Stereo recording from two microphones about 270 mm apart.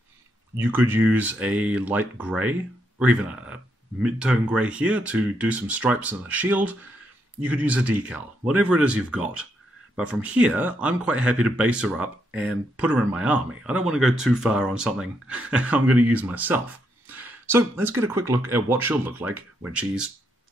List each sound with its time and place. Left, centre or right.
0.6 s speech: centre